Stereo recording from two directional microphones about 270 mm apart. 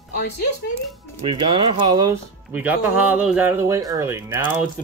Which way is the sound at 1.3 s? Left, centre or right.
Centre.